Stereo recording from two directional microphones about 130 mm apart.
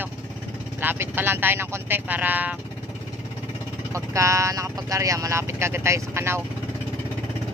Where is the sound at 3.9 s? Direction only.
25° right (ahead or behind).